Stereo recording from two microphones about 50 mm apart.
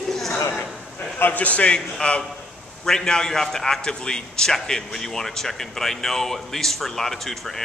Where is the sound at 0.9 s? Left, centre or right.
Left.